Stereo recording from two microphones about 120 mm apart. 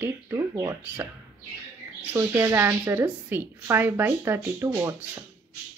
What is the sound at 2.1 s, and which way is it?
A woman's voice, 20° right (ahead or behind).